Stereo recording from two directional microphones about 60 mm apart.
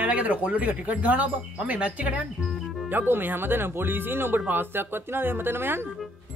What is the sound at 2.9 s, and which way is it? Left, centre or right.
Speech, right.